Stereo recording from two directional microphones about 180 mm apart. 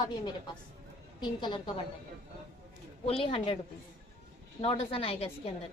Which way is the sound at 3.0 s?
30° left (ahead or behind).